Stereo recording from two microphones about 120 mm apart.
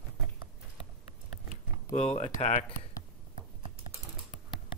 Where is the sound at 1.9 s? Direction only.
65° left (ahead or behind).